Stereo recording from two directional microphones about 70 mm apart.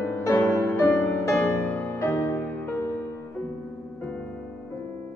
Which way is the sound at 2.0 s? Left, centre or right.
Left.